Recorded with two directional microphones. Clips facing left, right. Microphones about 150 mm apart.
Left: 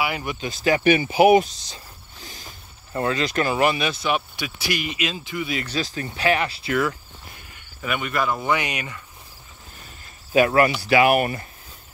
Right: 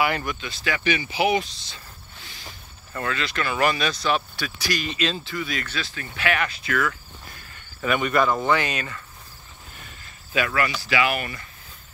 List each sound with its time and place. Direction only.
0.4 s speech: 40° left (ahead or behind)
2.9 s speech: 30° left (ahead or behind)
3.3 s speech: 45° left (ahead or behind)
3.5 s speech: 20° left (ahead or behind)
5.7 s speech: 35° left (ahead or behind)
7.4 s speech: 10° left (ahead or behind)
10.3 s speech: 40° left (ahead or behind)
10.9 s speech: 50° left (ahead or behind)